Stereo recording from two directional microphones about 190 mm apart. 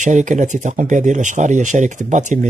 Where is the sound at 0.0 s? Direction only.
40° right (ahead or behind).